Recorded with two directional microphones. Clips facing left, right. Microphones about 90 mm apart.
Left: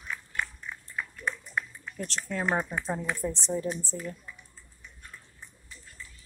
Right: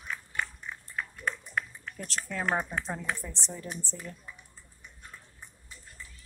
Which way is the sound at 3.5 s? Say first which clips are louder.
Left 7 dB; 20° left (ahead or behind).